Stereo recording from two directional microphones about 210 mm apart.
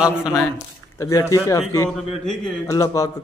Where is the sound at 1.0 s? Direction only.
15° left (ahead or behind).